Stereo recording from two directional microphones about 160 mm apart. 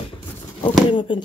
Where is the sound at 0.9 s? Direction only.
30° left (ahead or behind).